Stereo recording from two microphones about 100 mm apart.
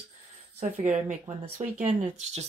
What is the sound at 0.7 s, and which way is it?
Speech, 15° right (ahead or behind).